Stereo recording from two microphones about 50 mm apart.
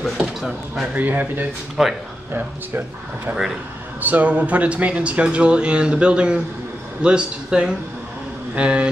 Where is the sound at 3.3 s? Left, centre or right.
Centre.